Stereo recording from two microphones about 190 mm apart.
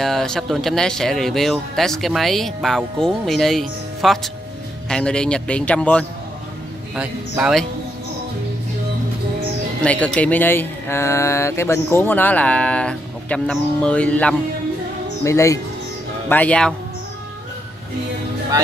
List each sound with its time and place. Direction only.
0.0 s speech: centre (ahead or behind)
7.0 s speech: 5° right (ahead or behind)
9.8 s speech: 5° left (ahead or behind)